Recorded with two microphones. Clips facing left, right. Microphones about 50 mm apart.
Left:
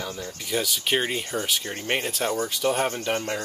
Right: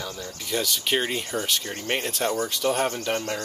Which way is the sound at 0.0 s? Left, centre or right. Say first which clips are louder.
Left 1 dB; centre.